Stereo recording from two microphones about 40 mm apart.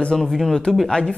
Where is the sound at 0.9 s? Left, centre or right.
Centre.